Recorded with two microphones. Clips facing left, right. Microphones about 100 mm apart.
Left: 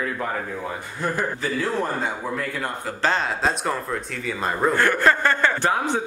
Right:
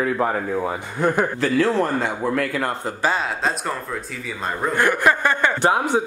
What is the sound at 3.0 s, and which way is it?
Speech, 5° right (ahead or behind).